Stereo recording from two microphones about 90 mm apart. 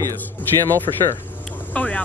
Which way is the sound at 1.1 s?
20° left (ahead or behind).